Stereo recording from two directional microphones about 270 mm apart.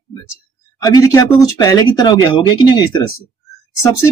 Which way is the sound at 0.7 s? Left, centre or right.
Centre.